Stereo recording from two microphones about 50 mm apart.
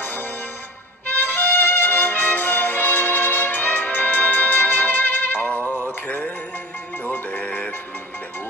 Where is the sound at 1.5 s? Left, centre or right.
Left.